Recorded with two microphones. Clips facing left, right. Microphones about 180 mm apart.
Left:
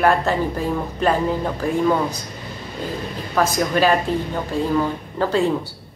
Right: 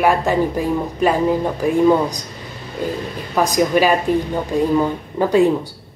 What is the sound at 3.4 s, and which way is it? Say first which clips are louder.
Speech: right 3 dB; 15° right (ahead or behind).